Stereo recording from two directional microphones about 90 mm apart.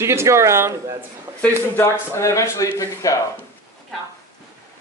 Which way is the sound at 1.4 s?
25° left (ahead or behind).